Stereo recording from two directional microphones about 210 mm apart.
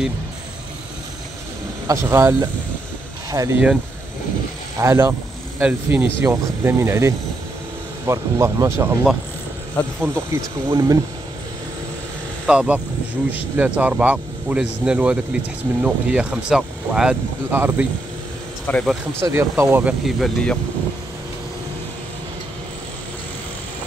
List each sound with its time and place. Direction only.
1.9 s speech: 15° right (ahead or behind)
4.7 s speech: 15° right (ahead or behind)
12.4 s speech: 5° right (ahead or behind)
18.7 s speech: 5° left (ahead or behind)
19.2 s speech: 15° right (ahead or behind)